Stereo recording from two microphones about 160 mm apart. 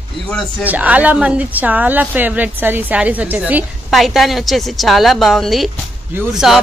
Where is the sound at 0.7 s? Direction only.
10° right (ahead or behind).